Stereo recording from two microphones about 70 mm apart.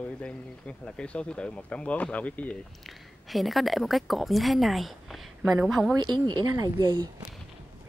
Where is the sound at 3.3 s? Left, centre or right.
Centre.